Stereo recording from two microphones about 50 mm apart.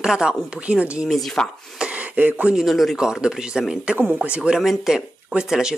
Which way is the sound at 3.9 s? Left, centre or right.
Right.